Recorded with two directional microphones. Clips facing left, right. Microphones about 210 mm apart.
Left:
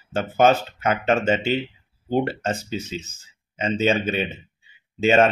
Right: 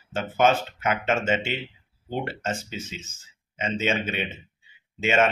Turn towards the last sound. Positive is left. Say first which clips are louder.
# left 5 dB
turn(degrees=35)  # may be behind; listen again after turning